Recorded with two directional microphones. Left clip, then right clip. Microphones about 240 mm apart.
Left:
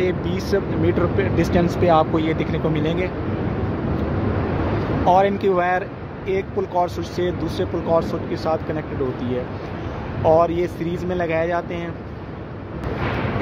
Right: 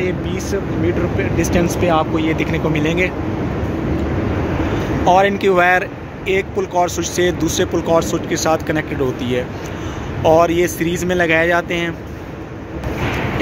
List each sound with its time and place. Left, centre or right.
0.0 s speech: centre
5.0 s speech: centre
10.2 s speech: centre